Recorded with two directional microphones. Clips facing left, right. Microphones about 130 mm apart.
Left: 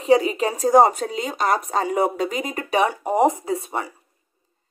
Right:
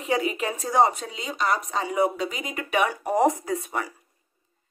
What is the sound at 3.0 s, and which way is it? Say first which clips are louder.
Speech: left 3 dB; 20° left (ahead or behind).